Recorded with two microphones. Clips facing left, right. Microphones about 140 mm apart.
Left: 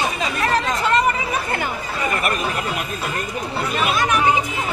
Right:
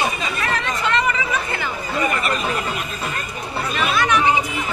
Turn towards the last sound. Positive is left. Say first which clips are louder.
# right 1 dB
turn(degrees=45)  # may be behind; listen again after turning